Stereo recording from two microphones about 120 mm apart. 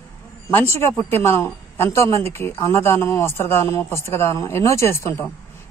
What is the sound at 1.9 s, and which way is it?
A man's voice, 25° left (ahead or behind).